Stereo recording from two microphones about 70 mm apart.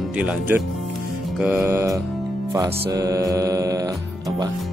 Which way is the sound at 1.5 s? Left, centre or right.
Right.